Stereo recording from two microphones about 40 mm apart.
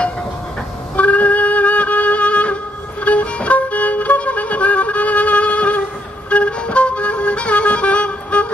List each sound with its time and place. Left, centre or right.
0.9 s music: left